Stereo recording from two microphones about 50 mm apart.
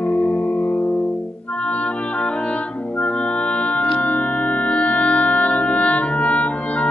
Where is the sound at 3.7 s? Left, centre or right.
Left.